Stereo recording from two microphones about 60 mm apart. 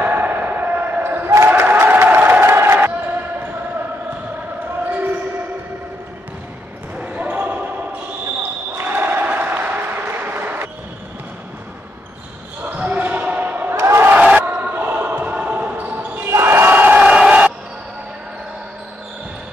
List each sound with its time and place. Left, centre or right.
0.0 s basketball bounce: right
1.7 s crowd: right
4.8 s basketball bounce: right
7.0 s basketball bounce: right
8.8 s applause: right
12.7 s basketball bounce: right
13.7 s crowd: right
14.1 s basketball bounce: right
16.3 s basketball bounce: right
16.7 s a sound: right